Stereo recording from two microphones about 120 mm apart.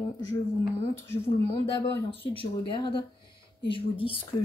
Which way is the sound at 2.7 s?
40° left (ahead or behind).